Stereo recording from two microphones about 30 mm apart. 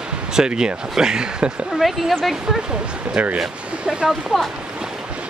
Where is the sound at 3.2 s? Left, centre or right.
Right.